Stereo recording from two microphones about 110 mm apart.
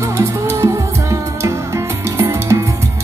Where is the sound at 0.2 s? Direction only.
25° right (ahead or behind).